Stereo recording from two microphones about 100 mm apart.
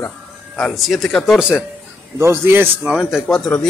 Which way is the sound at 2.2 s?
25° right (ahead or behind).